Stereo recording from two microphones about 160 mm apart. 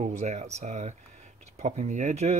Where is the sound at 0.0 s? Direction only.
45° right (ahead or behind).